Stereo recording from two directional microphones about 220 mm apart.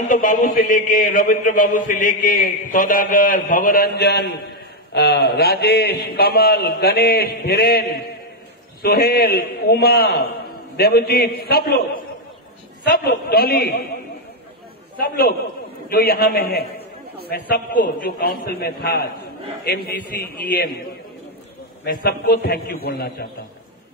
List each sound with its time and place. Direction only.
0.1 s a man's voice: 35° left (ahead or behind)
15.9 s a man's voice: 45° left (ahead or behind)
21.9 s a man's voice: 45° left (ahead or behind)